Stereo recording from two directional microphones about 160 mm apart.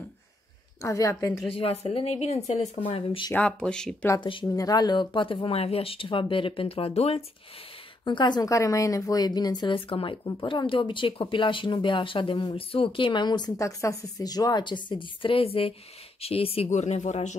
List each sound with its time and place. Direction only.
0.8 s speech: 20° left (ahead or behind)
1.5 s speech: 35° left (ahead or behind)
3.3 s speech: 5° left (ahead or behind)
4.2 s speech: 30° left (ahead or behind)
8.0 s speech: 30° left (ahead or behind); by 17.4 s 50° left (ahead or behind)